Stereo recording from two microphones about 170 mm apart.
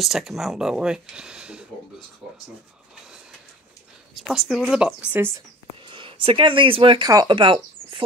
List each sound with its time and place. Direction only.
0.0 s speech: centre (ahead or behind)
4.1 s speech: centre (ahead or behind)
5.9 s speech: 30° right (ahead or behind)